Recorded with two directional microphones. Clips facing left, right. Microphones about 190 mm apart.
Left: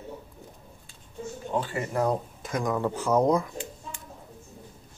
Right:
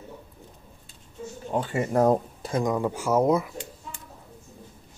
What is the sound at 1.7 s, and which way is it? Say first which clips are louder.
Speech: right 8 dB; 45° right (ahead or behind).